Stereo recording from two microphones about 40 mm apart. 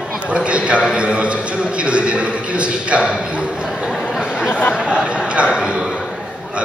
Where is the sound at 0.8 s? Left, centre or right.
Right.